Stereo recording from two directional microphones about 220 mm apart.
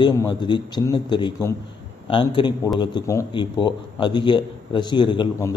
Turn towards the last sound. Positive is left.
turn(degrees=20)  # may be behind; listen again after turning